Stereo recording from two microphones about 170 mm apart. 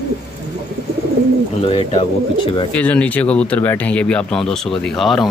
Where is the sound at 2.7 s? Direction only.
10° left (ahead or behind).